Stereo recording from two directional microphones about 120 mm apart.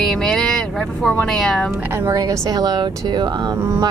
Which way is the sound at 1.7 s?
20° right (ahead or behind).